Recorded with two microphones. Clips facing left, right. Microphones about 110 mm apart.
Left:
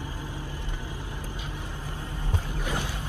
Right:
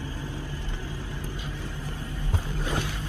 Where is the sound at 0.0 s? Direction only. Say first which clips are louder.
Right 1 dB; 15° left (ahead or behind).